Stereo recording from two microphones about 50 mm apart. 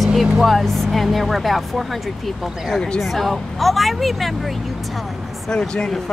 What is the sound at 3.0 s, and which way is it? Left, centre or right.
Speech, centre.